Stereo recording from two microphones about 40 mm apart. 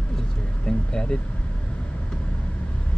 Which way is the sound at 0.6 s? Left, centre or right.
Left.